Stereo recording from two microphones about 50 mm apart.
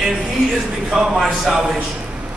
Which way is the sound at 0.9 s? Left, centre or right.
Centre.